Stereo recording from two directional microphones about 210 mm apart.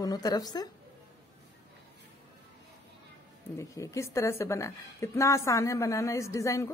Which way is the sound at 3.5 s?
15° left (ahead or behind).